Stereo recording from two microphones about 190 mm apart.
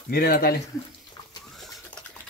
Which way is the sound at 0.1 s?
50° left (ahead or behind).